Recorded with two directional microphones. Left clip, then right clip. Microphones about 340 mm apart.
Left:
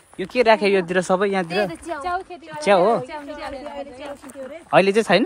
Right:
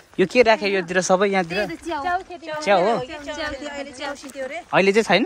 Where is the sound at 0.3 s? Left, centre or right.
Centre.